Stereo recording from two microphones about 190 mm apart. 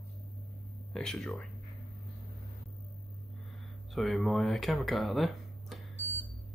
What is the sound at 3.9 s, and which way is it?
Speech, centre (ahead or behind).